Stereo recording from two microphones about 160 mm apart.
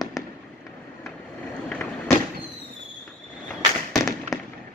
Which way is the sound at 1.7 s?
10° left (ahead or behind).